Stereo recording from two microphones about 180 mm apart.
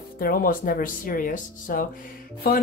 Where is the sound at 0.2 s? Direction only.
50° left (ahead or behind).